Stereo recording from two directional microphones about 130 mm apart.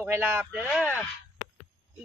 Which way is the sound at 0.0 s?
15° right (ahead or behind).